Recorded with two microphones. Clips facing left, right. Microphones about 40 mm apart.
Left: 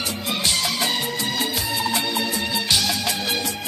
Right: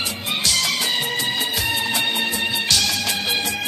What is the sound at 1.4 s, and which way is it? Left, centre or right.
Music, right.